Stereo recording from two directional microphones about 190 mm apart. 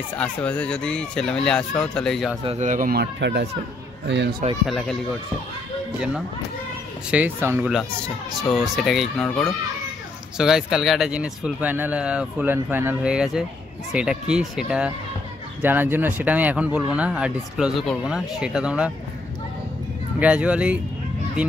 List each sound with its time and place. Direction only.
0.1 s speech: 5° left (ahead or behind)
2.4 s speech: 35° right (ahead or behind); by 4.4 s 65° right (ahead or behind)
4.6 s speech: centre (ahead or behind)
7.1 s speech: 10° right (ahead or behind)
20.2 s speech: 5° right (ahead or behind)